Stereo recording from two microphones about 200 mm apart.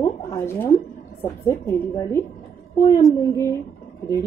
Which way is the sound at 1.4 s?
20° left (ahead or behind).